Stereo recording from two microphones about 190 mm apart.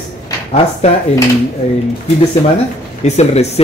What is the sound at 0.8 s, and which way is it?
Speech, 35° left (ahead or behind).